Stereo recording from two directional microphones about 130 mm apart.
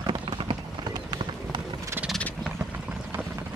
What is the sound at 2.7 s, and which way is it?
Clip-clop, 15° right (ahead or behind).